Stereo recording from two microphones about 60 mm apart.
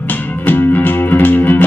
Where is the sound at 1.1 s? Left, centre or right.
Left.